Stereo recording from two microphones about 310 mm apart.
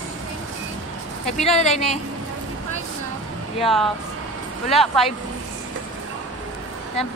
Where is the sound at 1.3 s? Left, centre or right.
Left.